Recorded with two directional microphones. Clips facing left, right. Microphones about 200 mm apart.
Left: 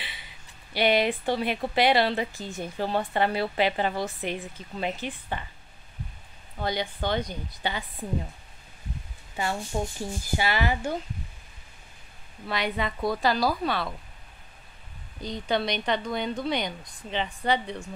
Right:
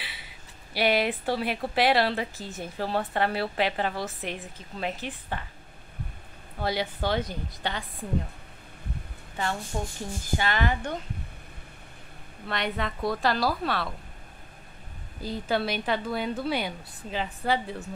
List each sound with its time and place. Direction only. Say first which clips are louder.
0.0 s a sound: even; 5° right (ahead or behind)
0.7 s speech: left 2 dB; 5° right (ahead or behind)
6.6 s speech: right 1 dB; 5° right (ahead or behind)
9.7 s speech: left 3 dB; 15° left (ahead or behind)
12.4 s speech: left 1 dB; centre (ahead or behind)
15.2 s speech: even; 5° right (ahead or behind)